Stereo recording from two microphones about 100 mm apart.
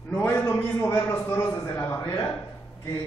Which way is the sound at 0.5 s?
20° left (ahead or behind).